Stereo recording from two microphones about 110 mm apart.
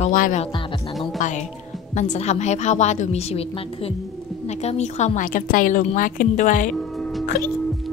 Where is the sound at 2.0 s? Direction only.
90° left; by 3.9 s 60° left (ahead or behind).